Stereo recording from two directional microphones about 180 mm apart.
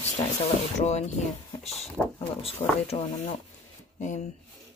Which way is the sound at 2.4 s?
35° left (ahead or behind).